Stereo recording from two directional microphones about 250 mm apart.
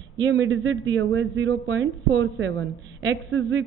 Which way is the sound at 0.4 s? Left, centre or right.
Right.